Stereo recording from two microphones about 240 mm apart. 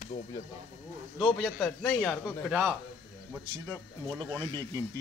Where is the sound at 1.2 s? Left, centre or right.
Centre.